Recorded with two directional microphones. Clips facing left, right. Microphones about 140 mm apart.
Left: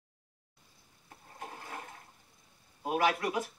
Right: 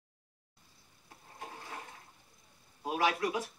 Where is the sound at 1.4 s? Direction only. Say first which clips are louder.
Left 2 dB; 50° left (ahead or behind).